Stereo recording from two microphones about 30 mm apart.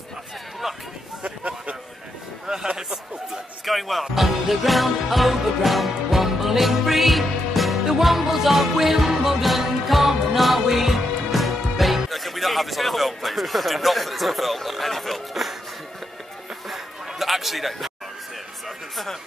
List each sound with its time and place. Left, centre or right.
1.2 s a sound: right
2.4 s music: right
3.6 s speech: centre
6.0 s music: centre
12.1 s speech: centre
16.6 s a sound: centre